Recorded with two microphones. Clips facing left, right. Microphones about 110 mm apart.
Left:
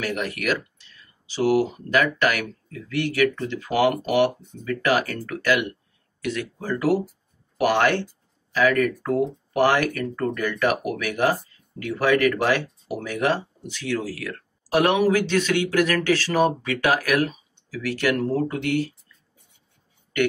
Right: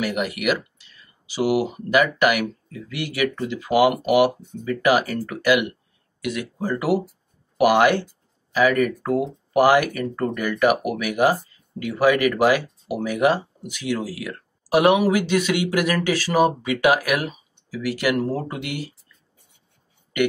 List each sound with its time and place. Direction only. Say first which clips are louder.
0.0 s speech: right 3 dB; 10° right (ahead or behind)